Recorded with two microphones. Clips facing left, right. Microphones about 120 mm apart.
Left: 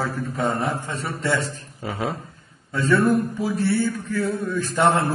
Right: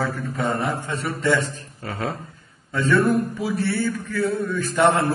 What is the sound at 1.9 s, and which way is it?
A man's voice, centre (ahead or behind).